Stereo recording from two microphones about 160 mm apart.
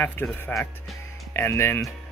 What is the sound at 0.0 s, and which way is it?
Speech, 10° left (ahead or behind).